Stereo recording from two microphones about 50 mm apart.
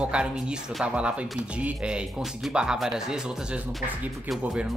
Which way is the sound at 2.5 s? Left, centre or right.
Centre.